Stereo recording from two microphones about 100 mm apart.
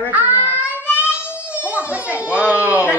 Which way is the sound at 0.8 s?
20° left (ahead or behind).